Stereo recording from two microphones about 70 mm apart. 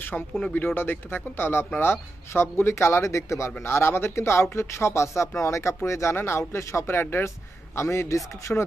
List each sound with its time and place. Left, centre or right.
0.1 s speech: centre
0.7 s speech: left
7.7 s speech: left